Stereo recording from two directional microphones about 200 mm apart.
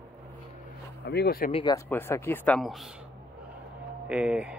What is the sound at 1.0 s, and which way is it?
Speech, 55° left (ahead or behind).